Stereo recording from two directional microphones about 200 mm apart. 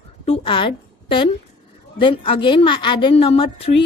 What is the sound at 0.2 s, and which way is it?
A woman's voice, 30° left (ahead or behind).